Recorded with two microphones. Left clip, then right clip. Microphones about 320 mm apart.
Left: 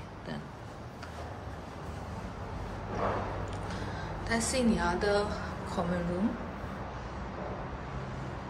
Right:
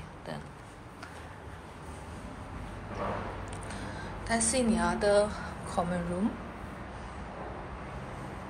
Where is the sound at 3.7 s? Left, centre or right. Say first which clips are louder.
Left 2 dB; centre.